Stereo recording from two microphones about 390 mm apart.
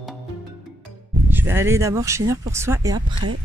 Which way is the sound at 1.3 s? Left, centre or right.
Centre.